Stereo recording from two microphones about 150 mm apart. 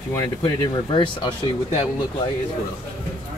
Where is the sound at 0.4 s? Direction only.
35° left (ahead or behind).